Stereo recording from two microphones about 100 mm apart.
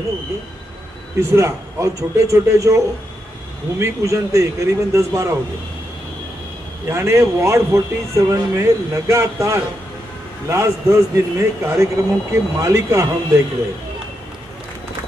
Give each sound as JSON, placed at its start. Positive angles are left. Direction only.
{"t": 1.2, "sound": "speech", "side_deg": -30}
{"t": 6.9, "sound": "speech", "side_deg": -30}